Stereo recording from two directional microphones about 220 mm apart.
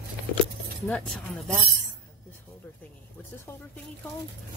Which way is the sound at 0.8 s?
5° left (ahead or behind).